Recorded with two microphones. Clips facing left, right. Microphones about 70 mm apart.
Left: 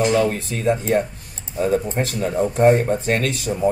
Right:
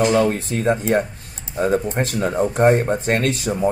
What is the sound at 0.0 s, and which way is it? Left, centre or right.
Speech, right.